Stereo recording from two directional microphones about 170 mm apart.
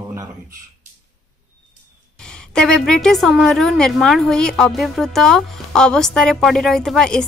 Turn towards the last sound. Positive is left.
turn(degrees=5)  # may be behind; listen again after turning